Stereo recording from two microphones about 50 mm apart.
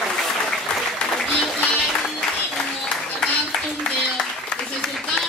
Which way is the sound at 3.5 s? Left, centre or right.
Centre.